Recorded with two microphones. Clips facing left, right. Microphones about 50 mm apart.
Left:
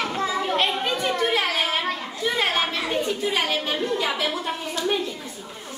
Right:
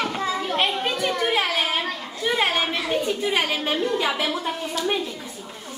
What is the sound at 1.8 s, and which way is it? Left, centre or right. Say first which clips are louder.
Children playing: left 2 dB; centre.